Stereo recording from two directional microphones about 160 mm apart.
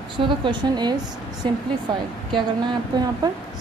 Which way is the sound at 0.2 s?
30° right (ahead or behind).